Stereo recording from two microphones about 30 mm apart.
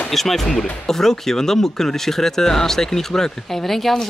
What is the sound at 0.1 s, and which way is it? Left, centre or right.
Speech, centre.